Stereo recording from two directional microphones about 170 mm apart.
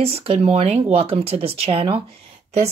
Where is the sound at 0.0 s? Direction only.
35° right (ahead or behind).